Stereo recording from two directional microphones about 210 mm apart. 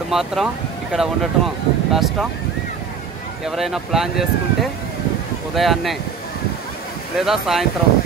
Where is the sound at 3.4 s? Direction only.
Centre (ahead or behind).